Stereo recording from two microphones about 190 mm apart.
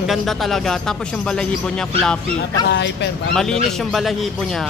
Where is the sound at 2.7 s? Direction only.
65° left (ahead or behind).